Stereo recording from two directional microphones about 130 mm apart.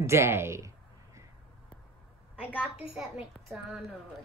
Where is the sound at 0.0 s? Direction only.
20° right (ahead or behind).